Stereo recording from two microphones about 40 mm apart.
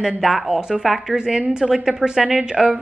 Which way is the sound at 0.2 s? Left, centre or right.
Centre.